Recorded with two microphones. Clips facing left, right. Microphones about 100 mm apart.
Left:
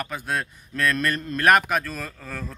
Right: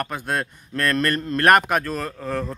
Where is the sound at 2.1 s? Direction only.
20° right (ahead or behind).